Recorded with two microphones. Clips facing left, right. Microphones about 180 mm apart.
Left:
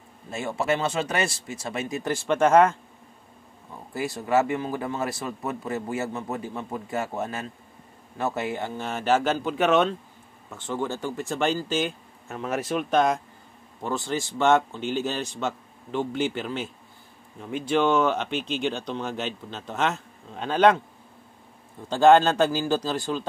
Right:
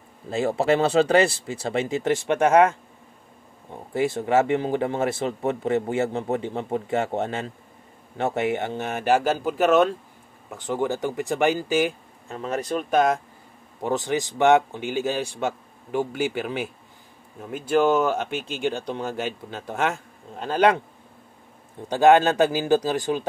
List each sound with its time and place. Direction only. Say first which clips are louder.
0.3 s speech: right 5 dB; 35° right (ahead or behind); by 2.7 s 15° right (ahead or behind)
3.9 s speech: right 3 dB; 25° right (ahead or behind)
8.6 s speech: right 3 dB; 60° right (ahead or behind)
9.0 s a man's voice: right 2 dB; 10° right (ahead or behind)
10.5 s a man's voice: right 4 dB; 15° right (ahead or behind)
12.9 s speech: right 2 dB; 5° right (ahead or behind)
13.7 s a man's voice: right 4 dB; 20° right (ahead or behind)
21.8 s a man's voice: right 1 dB; 15° right (ahead or behind)